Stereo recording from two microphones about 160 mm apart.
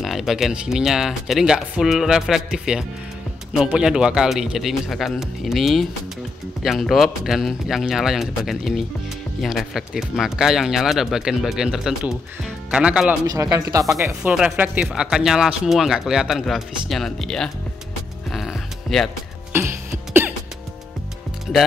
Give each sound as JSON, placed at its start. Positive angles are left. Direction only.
{"t": 0.0, "sound": "speech", "side_deg": 0}
{"t": 13.3, "sound": "speech", "side_deg": -20}
{"t": 14.3, "sound": "speech", "side_deg": -5}
{"t": 18.3, "sound": "music", "side_deg": 0}
{"t": 19.5, "sound": "cough", "side_deg": -15}